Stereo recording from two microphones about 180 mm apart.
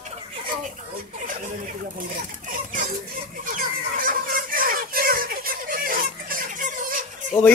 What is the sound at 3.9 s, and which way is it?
Fowl, 50° right (ahead or behind).